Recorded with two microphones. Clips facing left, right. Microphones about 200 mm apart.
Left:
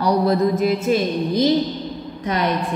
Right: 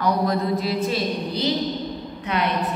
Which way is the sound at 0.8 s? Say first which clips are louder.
Left 6 dB; 50° left (ahead or behind).